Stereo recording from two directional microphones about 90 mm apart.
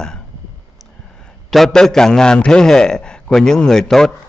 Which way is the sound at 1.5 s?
5° left (ahead or behind).